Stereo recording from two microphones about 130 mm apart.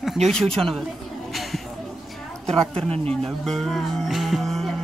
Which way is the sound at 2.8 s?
50° right (ahead or behind).